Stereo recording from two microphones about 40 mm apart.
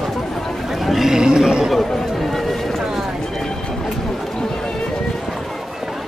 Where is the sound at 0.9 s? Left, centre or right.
Centre.